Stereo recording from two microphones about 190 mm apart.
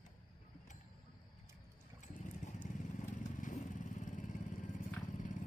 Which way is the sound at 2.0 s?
40° left (ahead or behind).